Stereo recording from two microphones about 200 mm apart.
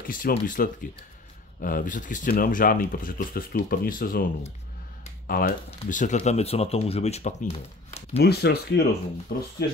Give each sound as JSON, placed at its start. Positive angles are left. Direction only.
{"t": 0.0, "sound": "speech", "side_deg": 45}
{"t": 5.7, "sound": "speech", "side_deg": 40}
{"t": 8.2, "sound": "speech", "side_deg": 55}